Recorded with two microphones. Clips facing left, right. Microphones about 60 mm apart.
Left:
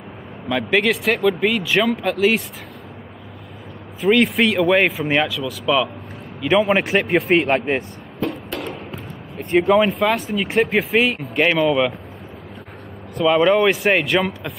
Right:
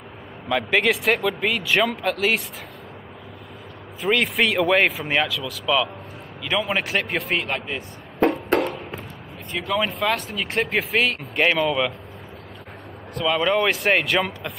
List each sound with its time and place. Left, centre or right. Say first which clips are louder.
0.5 s speech: left 2 dB; centre
4.0 s speech: left 5 dB; centre
6.4 s a man's voice: left 8 dB; centre
7.0 s speech: left 7 dB; centre
7.2 s speech: left 9 dB; left
8.6 s a sound: even; centre
9.8 s speech: left 5 dB; centre
13.2 s speech: left 6 dB; centre